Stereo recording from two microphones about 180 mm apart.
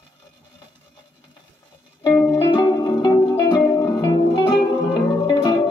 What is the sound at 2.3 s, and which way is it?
Music, 25° left (ahead or behind).